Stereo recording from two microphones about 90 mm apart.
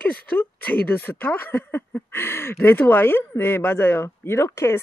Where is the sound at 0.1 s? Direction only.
15° left (ahead or behind).